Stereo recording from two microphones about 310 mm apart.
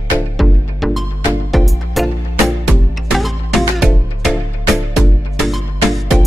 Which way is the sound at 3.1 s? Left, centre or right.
Centre.